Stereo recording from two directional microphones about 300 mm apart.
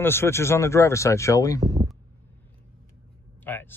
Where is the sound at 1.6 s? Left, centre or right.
Centre.